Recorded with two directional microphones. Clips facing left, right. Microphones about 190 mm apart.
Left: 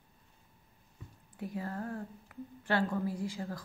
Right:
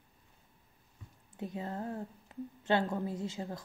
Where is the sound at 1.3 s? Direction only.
20° right (ahead or behind).